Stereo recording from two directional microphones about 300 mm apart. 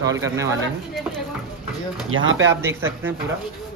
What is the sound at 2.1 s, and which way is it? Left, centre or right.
Speech, right.